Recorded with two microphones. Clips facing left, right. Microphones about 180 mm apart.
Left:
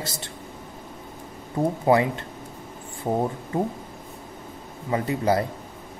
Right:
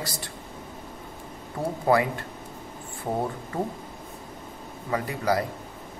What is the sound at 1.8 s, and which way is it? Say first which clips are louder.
Speech: left 1 dB; 20° left (ahead or behind).